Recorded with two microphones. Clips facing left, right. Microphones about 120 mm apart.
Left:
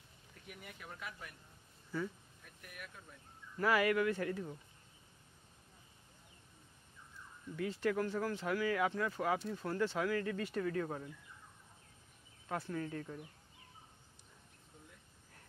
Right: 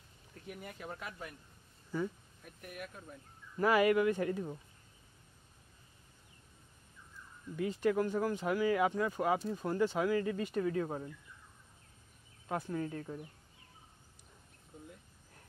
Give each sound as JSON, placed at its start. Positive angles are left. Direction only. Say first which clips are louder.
{"t": 0.5, "sound": "speech", "louder": "right 7 dB", "side_deg": -40}
{"t": 1.9, "sound": "speech", "louder": "right 3 dB", "side_deg": -15}
{"t": 2.4, "sound": "speech", "louder": "right 7 dB", "side_deg": -35}
{"t": 3.5, "sound": "speech", "louder": "right 4 dB", "side_deg": -20}
{"t": 7.5, "sound": "speech", "louder": "right 4 dB", "side_deg": -15}
{"t": 12.4, "sound": "speech", "louder": "right 3 dB", "side_deg": -15}